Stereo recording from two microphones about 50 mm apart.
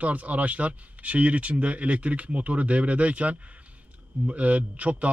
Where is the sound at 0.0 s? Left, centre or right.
Right.